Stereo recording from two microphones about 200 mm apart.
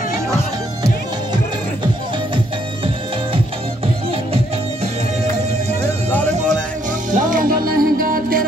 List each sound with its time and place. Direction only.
3.8 s music: 30° right (ahead or behind)
7.1 s music: 40° right (ahead or behind)